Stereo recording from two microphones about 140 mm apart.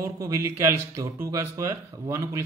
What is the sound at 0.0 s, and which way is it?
Speech, 20° right (ahead or behind).